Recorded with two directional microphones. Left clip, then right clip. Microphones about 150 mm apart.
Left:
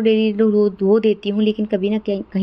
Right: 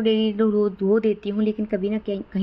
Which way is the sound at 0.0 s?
25° left (ahead or behind).